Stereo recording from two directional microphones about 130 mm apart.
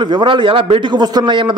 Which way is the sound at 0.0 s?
35° right (ahead or behind).